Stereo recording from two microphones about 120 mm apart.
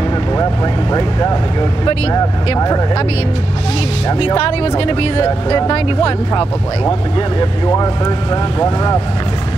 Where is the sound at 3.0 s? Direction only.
55° left (ahead or behind).